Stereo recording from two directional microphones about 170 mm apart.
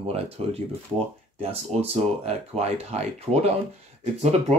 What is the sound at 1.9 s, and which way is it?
Speech, 40° right (ahead or behind).